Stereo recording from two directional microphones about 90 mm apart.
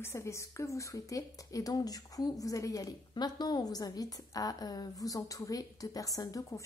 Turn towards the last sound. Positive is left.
turn(degrees=40)  # may be behind; listen again after turning